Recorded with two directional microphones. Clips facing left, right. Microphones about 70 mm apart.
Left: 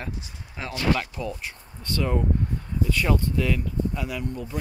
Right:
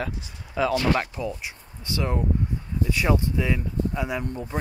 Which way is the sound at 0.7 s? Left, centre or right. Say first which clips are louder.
Right 2 dB; right.